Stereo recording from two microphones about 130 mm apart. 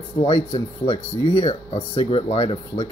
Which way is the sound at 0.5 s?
40° left (ahead or behind).